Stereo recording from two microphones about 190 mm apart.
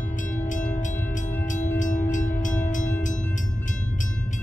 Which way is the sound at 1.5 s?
40° left (ahead or behind).